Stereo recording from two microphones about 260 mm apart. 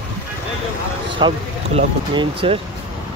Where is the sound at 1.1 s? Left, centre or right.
Centre.